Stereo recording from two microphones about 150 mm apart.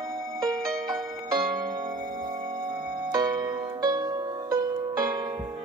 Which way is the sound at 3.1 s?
25° right (ahead or behind).